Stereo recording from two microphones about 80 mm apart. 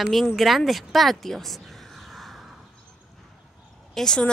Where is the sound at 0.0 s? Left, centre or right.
Centre.